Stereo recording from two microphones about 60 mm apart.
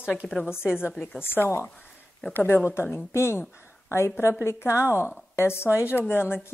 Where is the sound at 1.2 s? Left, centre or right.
Left.